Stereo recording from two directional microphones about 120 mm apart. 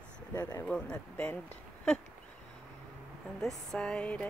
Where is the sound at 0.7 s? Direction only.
10° left (ahead or behind).